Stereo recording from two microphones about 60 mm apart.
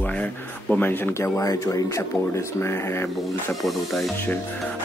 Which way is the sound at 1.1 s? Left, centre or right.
Left.